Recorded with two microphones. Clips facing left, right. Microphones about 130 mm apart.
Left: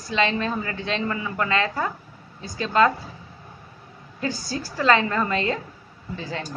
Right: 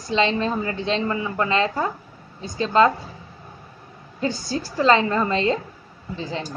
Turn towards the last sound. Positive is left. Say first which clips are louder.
# right 2 dB
turn(degrees=-25)  # may be behind; listen again after turning